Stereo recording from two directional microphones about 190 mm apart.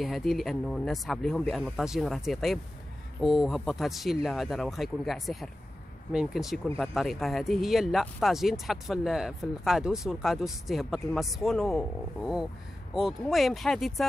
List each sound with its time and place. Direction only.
0.0 s speech: centre (ahead or behind)